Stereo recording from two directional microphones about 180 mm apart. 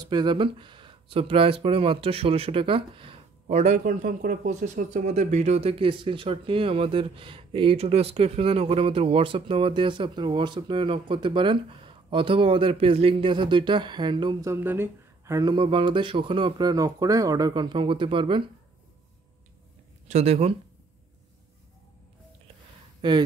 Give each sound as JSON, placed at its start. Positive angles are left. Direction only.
{"t": 0.0, "sound": "speech", "side_deg": -25}
{"t": 14.5, "sound": "speech", "side_deg": -10}
{"t": 20.1, "sound": "speech", "side_deg": -35}
{"t": 23.0, "sound": "speech", "side_deg": -25}